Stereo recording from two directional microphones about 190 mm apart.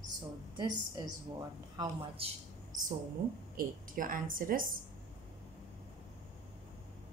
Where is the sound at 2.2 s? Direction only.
30° right (ahead or behind).